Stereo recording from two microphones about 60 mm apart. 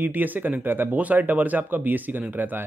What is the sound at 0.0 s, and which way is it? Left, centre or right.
Speech, right.